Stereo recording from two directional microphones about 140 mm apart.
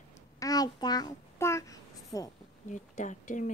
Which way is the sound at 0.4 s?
25° left (ahead or behind).